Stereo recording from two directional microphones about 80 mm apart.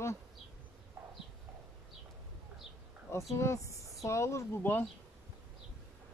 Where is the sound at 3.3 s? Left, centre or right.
Left.